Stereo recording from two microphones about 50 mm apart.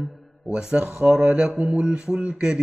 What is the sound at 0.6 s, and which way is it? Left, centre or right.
Speech, centre.